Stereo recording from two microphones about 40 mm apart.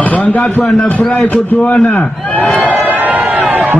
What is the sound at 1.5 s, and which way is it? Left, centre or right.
Speech, left.